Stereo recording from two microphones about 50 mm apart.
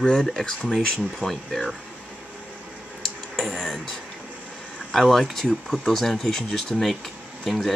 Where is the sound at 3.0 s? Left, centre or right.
Centre.